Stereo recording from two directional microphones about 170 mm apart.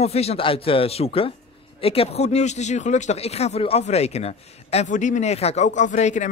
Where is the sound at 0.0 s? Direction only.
35° left (ahead or behind).